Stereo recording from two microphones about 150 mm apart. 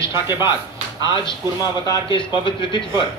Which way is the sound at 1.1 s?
25° left (ahead or behind).